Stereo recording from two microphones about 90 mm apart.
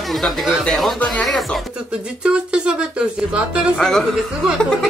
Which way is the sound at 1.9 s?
10° right (ahead or behind).